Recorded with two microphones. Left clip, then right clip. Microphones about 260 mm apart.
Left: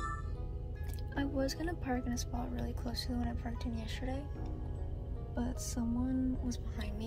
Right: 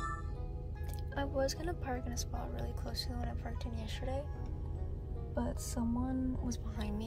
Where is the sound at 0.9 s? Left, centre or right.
Centre.